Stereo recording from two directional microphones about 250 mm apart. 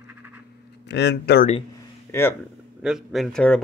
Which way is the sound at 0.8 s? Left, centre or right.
Left.